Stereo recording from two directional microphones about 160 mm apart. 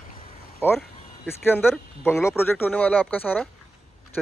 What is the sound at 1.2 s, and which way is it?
Speech, 15° left (ahead or behind).